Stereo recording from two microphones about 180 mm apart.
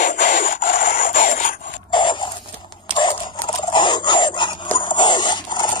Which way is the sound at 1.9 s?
25° left (ahead or behind).